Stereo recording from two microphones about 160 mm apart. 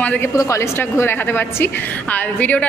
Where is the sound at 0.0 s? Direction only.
10° left (ahead or behind).